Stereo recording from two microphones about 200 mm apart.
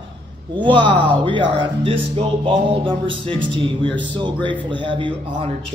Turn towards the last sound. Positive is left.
turn(degrees=-25)  # may be behind; listen again after turning